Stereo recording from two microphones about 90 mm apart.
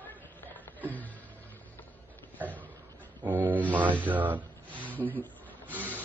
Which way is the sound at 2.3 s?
20° right (ahead or behind).